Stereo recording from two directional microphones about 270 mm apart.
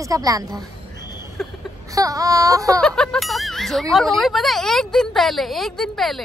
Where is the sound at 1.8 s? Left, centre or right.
Centre.